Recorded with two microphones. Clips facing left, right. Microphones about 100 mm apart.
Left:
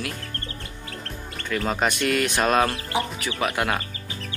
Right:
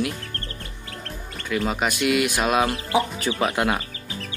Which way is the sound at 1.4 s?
10° right (ahead or behind).